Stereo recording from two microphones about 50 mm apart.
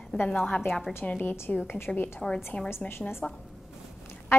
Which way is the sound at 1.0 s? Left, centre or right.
Left.